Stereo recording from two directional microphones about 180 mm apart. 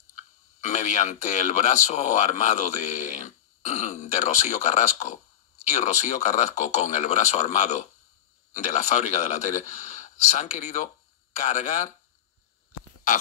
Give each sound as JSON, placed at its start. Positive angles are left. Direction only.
{"t": 0.1, "sound": "speech", "side_deg": 40}